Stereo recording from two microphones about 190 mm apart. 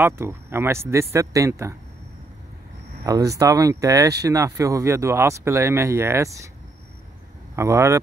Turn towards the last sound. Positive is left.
turn(degrees=-15)  # may be behind; listen again after turning